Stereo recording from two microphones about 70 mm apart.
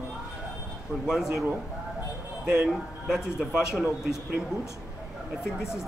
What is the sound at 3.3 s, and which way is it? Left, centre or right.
Speech, centre.